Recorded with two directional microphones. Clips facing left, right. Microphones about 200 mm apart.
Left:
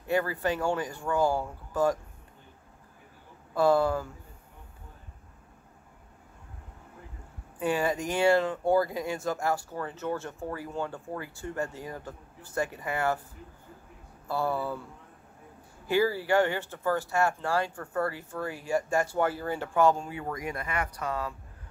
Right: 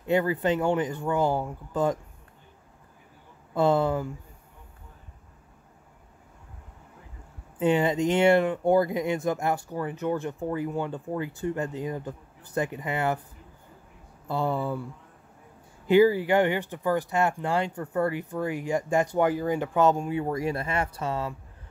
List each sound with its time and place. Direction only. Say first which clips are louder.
0.0 s speech: right 4 dB; 20° right (ahead or behind)
3.5 s speech: right 1 dB; 20° right (ahead or behind)
7.5 s speech: right 5 dB; 20° right (ahead or behind)
14.2 s speech: right 2 dB; 20° right (ahead or behind)
15.9 s speech: right 6 dB; 20° right (ahead or behind)